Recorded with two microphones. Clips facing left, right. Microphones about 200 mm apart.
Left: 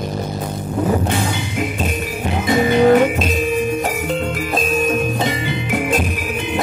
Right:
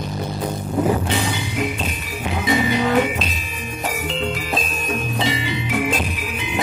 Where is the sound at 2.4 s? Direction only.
50° left (ahead or behind).